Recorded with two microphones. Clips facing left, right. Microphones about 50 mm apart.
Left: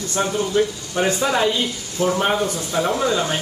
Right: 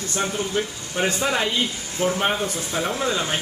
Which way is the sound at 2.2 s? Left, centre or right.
Right.